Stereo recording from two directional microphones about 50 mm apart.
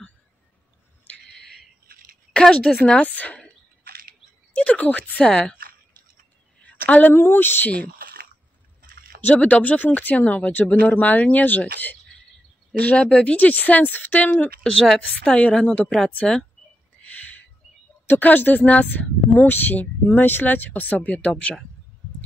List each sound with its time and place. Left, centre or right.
2.3 s a woman's voice: centre
4.6 s a woman's voice: left
5.2 s speech: centre
6.6 s a sound: left
7.2 s speech: left
9.2 s speech: left
13.0 s speech: centre; by 14.3 s left
14.6 s a woman's voice: centre
15.6 s a woman's voice: left
17.0 s a sound: left
18.0 s speech: left